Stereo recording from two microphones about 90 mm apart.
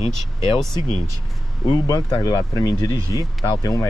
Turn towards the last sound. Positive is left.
turn(degrees=40)  # may be behind; listen again after turning